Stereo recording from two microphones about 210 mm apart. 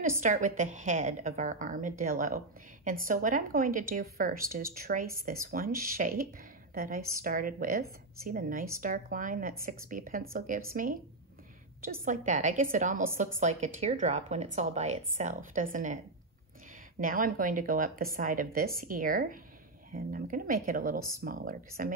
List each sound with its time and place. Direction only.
0.2 s a woman's voice: 35° right (ahead or behind)
17.0 s a woman's voice: 40° right (ahead or behind)